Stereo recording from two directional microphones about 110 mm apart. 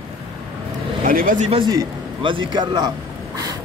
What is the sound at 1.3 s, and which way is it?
Speech, 90° right.